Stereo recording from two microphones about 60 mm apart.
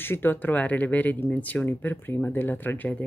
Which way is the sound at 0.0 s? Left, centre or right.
Left.